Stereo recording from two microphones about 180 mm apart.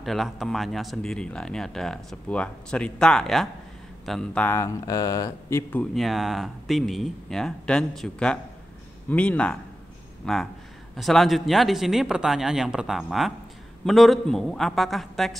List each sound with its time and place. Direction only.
0.0 s speech: centre (ahead or behind)